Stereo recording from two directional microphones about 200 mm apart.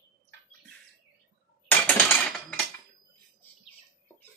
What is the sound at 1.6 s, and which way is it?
Cutlery, 5° left (ahead or behind).